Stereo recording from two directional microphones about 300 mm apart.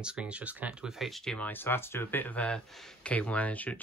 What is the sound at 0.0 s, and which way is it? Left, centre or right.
Speech, centre.